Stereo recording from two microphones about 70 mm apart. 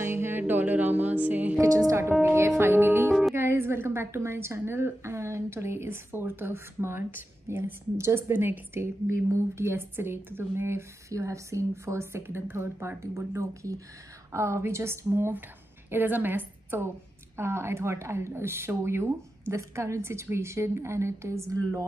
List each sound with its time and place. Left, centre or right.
0.0 s music: right
1.9 s a woman's voice: right
2.2 s music: right
3.3 s a woman's voice: right